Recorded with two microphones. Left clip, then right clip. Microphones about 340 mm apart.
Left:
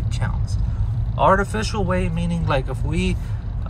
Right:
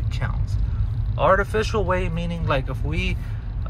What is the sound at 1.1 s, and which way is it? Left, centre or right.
Speech, centre.